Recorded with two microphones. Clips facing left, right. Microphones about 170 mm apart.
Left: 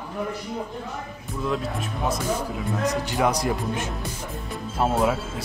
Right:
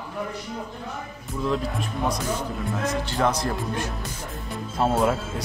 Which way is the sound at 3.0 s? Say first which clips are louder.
Left 1 dB; 15° left (ahead or behind).